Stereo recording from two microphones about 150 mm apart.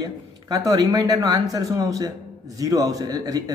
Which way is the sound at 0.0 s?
25° right (ahead or behind).